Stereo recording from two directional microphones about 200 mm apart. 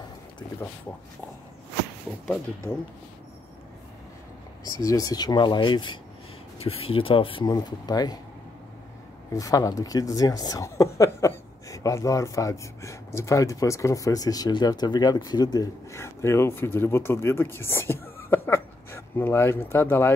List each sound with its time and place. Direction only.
4.6 s speech: 15° left (ahead or behind)
9.3 s a woman's voice: 15° left (ahead or behind)